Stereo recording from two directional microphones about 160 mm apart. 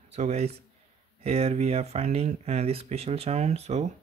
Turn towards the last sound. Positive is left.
turn(degrees=-45)  # may be behind; listen again after turning